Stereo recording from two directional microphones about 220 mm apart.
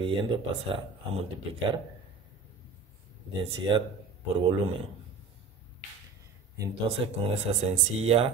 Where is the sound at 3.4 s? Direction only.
20° right (ahead or behind).